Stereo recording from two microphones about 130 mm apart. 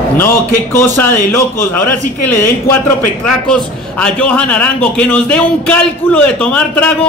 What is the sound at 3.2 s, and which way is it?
A man's voice, 5° left (ahead or behind).